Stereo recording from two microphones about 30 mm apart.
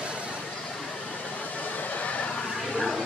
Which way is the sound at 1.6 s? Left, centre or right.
Left.